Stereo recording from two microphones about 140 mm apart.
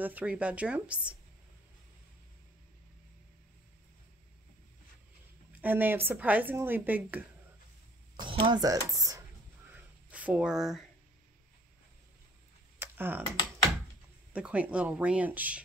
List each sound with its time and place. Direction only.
0.0 s a woman's voice: 10° right (ahead or behind)
5.5 s a woman's voice: 10° right (ahead or behind)
8.2 s speech: 35° right (ahead or behind)
10.1 s speech: 10° right (ahead or behind)
12.7 s tick-tock: 15° right (ahead or behind)
14.3 s a woman's voice: 10° right (ahead or behind)